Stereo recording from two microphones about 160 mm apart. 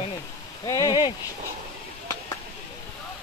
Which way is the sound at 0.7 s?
25° left (ahead or behind).